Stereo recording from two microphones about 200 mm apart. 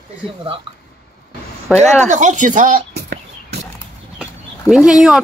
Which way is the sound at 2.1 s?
40° right (ahead or behind).